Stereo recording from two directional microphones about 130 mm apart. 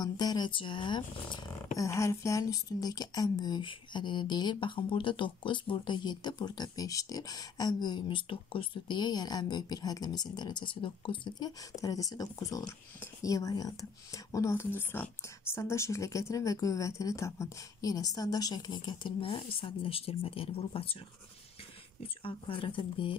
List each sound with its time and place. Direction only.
0.0 s speech: 30° left (ahead or behind)
1.8 s speech: 20° left (ahead or behind); by 21.0 s 45° left (ahead or behind)
22.0 s speech: 40° left (ahead or behind)